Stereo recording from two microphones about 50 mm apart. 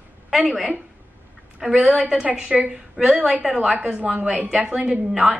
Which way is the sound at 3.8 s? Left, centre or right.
Right.